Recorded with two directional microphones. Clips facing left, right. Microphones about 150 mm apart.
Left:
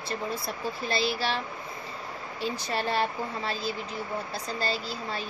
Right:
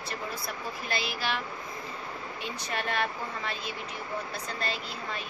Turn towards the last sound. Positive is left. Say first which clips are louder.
# left 3 dB
turn(degrees=35)  # may be behind; listen again after turning